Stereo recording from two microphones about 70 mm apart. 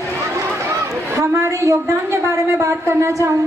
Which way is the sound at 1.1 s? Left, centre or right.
Right.